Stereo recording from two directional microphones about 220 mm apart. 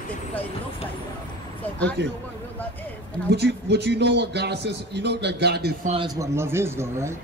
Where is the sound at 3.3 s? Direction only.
50° right (ahead or behind).